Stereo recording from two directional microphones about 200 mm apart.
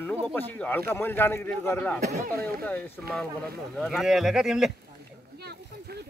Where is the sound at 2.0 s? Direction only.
45° right (ahead or behind).